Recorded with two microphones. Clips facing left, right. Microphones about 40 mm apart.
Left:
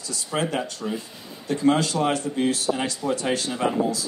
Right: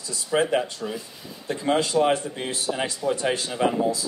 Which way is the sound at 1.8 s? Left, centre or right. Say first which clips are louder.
Right 2 dB; centre.